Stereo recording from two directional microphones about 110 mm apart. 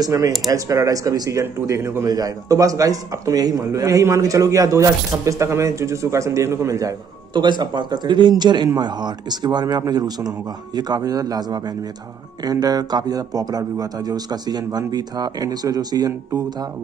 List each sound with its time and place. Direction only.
0.0 s a man's voice: 30° right (ahead or behind)
7.3 s a man's voice: 45° right (ahead or behind)